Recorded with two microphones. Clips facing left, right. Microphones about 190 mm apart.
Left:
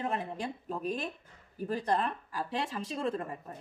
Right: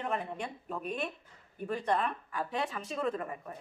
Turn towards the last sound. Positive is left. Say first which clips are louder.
# even
turn(degrees=30)  # may be behind; listen again after turning